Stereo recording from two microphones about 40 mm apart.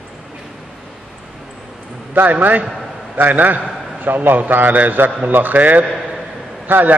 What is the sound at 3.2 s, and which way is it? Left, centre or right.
A man's voice, right.